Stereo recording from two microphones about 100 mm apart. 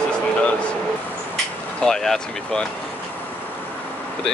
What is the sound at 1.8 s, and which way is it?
Speech, 5° left (ahead or behind).